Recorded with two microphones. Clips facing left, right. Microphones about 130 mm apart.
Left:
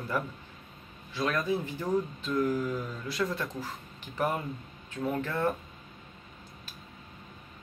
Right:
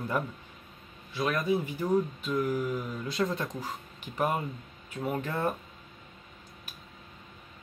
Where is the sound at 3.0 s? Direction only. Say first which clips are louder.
Right 2 dB; 20° right (ahead or behind).